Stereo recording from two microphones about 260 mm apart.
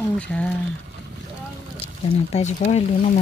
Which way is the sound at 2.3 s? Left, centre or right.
Left.